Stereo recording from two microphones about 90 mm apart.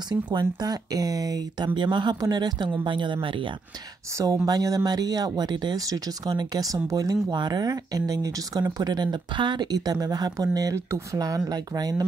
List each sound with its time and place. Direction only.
0.1 s speech: 50° right (ahead or behind)
2.1 s speech: 45° right (ahead or behind); by 3.5 s 70° right (ahead or behind)
4.1 s speech: 35° right (ahead or behind)
4.5 s speech: 45° right (ahead or behind)